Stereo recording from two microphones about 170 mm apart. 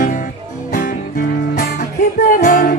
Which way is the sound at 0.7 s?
50° left (ahead or behind).